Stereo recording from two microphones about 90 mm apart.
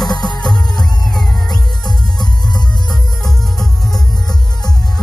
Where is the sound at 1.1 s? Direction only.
5° left (ahead or behind).